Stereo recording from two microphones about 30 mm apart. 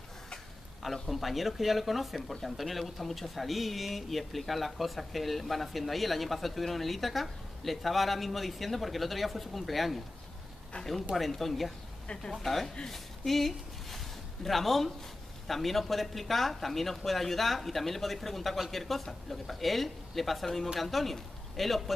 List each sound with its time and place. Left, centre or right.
1.0 s speech: centre
11.3 s speech: centre
12.2 s speech: left
12.4 s speech: centre
12.8 s a sound: centre
15.4 s speech: centre